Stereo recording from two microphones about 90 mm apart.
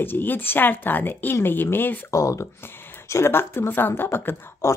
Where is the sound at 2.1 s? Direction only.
35° left (ahead or behind).